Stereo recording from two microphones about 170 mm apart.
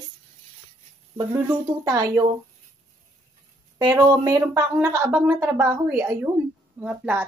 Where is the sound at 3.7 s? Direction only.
25° right (ahead or behind).